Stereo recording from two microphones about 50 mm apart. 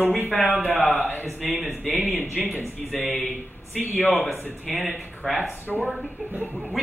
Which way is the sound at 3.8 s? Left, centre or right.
Left.